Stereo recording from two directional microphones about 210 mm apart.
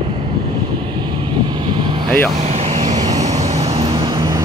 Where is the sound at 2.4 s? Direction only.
30° right (ahead or behind).